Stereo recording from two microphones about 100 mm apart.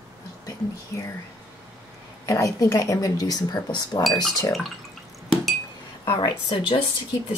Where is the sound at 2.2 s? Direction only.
35° left (ahead or behind).